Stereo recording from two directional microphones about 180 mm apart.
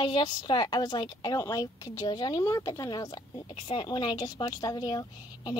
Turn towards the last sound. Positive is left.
turn(degrees=25)  # may be behind; listen again after turning